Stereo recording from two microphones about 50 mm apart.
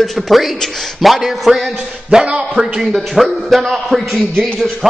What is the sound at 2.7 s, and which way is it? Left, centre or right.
A man's voice, centre.